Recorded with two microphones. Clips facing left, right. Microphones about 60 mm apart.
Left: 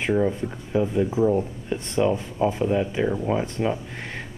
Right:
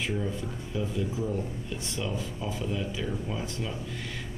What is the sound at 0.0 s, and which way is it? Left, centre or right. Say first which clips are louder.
Speech: left 9 dB; left.